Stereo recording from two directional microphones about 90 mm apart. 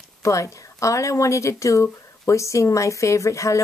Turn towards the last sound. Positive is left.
turn(degrees=35)  # may be behind; listen again after turning